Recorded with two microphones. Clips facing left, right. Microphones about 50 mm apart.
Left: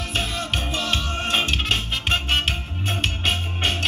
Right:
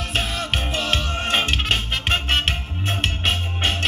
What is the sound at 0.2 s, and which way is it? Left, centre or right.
Music, right.